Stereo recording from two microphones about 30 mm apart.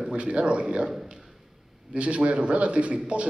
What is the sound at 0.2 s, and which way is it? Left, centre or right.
Speech, right.